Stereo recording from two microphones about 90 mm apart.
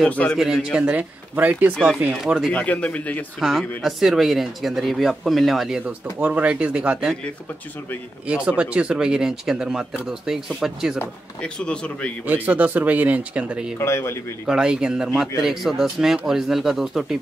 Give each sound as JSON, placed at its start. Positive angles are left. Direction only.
{"t": 0.0, "sound": "speech", "side_deg": 10}
{"t": 0.4, "sound": "speech", "side_deg": -5}
{"t": 2.1, "sound": "speech", "side_deg": -5}
{"t": 2.5, "sound": "speech", "side_deg": 15}
{"t": 3.3, "sound": "speech", "side_deg": 0}
{"t": 5.9, "sound": "speech", "side_deg": -15}
{"t": 8.3, "sound": "speech", "side_deg": -15}
{"t": 11.4, "sound": "speech", "side_deg": 10}
{"t": 12.4, "sound": "speech", "side_deg": -20}
{"t": 13.7, "sound": "a man's voice", "side_deg": 30}
{"t": 14.4, "sound": "speech", "side_deg": -10}